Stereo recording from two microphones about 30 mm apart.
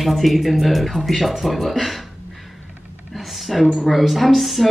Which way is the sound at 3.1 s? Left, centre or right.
Centre.